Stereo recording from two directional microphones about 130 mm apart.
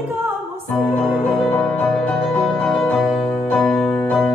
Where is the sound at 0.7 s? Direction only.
Centre (ahead or behind).